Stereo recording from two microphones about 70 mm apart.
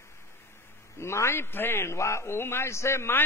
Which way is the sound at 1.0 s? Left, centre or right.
Left.